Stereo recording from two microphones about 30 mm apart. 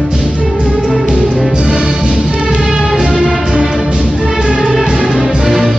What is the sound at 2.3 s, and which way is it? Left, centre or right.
Music, right.